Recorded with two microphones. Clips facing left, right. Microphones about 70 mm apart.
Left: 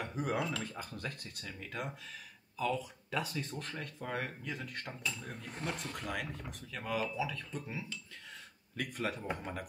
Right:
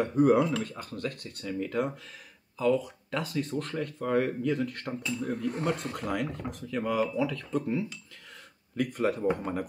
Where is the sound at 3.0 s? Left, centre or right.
Centre.